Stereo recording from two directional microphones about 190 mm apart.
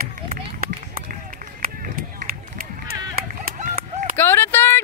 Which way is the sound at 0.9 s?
45° right (ahead or behind).